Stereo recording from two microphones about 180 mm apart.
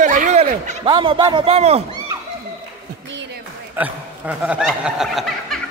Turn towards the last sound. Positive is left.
turn(degrees=0)  # may be behind; listen again after turning